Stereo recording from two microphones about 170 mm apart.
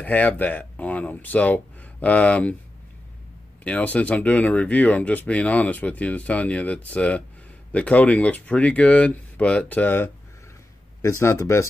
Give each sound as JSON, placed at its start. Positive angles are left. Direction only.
{"t": 0.0, "sound": "speech", "side_deg": 10}
{"t": 3.6, "sound": "speech", "side_deg": 10}